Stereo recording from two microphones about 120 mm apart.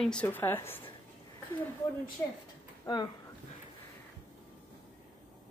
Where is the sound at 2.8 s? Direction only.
35° left (ahead or behind).